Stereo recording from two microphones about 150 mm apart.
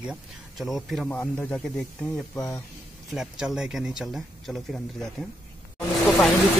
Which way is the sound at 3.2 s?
5° right (ahead or behind).